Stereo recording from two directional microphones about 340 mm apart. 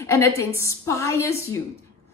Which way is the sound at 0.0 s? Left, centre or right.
Centre.